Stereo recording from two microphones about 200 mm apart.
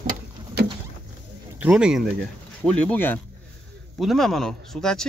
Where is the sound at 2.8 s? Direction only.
10° left (ahead or behind).